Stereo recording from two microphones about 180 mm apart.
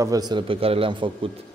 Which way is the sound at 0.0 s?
20° right (ahead or behind).